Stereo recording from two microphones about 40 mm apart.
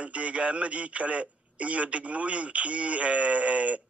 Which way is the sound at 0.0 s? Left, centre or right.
Right.